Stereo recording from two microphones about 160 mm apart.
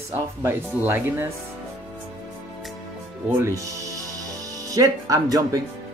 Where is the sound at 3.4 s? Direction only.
20° right (ahead or behind).